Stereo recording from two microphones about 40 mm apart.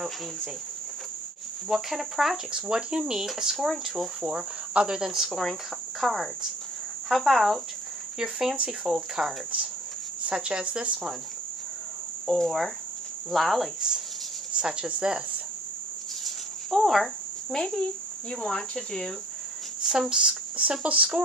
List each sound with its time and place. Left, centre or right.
1.7 s speech: centre
4.3 s speech: right
5.4 s cricket: centre
8.2 s speech: centre
10.3 s speech: right
12.3 s speech: centre
13.3 s cricket: centre
13.7 s speech: centre
14.6 s speech: right
16.3 s cricket: centre
18.3 s speech: centre
19.8 s a sound: centre
20.1 s speech: centre
20.8 s speech: right